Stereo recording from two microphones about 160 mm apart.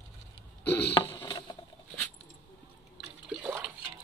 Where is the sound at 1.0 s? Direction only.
15° left (ahead or behind).